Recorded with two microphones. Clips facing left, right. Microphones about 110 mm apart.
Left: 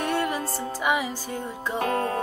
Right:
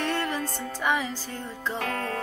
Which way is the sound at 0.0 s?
15° left (ahead or behind).